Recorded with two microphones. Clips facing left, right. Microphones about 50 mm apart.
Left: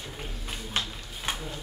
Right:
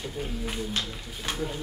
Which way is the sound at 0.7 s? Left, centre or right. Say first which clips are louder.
Even; left.